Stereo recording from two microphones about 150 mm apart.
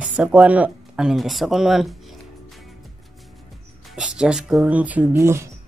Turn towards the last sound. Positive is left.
turn(degrees=-20)  # may be behind; listen again after turning